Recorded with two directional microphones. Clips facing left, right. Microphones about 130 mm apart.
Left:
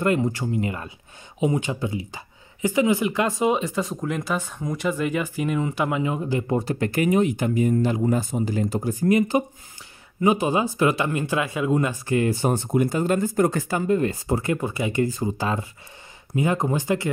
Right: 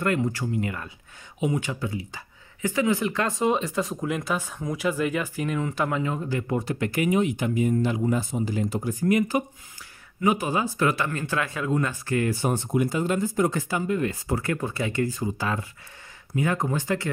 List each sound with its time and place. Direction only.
0.0 s speech: 20° left (ahead or behind)
6.5 s speech: 35° left (ahead or behind)
12.4 s speech: 45° left (ahead or behind); by 14.6 s 20° left (ahead or behind)
14.6 s speech: 10° left (ahead or behind)
15.1 s speech: 30° left (ahead or behind)